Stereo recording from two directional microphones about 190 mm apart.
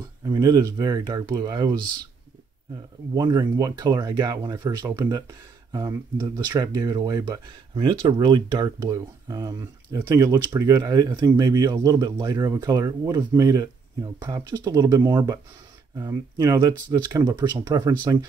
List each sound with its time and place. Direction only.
0.2 s speech: 20° right (ahead or behind)
3.2 s speech: 20° right (ahead or behind)